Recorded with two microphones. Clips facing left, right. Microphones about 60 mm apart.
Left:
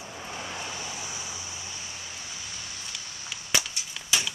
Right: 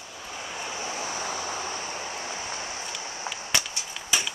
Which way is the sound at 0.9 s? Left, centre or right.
Right.